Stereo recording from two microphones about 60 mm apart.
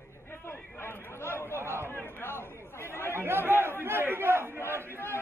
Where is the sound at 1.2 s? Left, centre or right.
Left.